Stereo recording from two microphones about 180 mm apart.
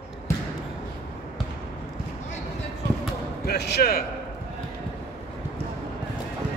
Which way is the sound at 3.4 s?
65° left (ahead or behind).